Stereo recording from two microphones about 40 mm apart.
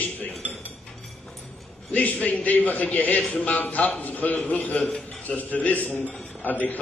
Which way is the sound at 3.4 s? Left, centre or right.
Left.